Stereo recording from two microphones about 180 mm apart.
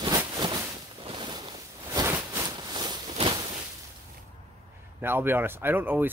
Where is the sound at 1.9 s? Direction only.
15° right (ahead or behind).